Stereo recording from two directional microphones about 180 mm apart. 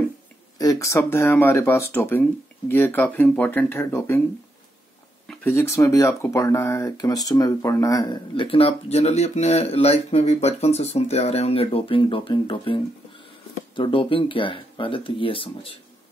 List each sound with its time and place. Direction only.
0.6 s speech: 20° left (ahead or behind)
5.3 s speech: 10° left (ahead or behind); by 15.7 s 30° left (ahead or behind)